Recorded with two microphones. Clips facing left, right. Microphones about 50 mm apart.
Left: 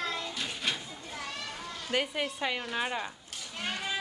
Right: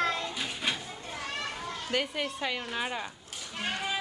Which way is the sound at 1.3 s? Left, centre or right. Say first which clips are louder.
Right 7 dB; right.